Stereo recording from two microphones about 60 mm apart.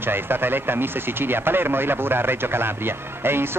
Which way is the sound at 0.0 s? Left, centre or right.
Right.